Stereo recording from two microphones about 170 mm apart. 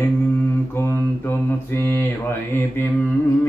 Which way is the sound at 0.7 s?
15° left (ahead or behind).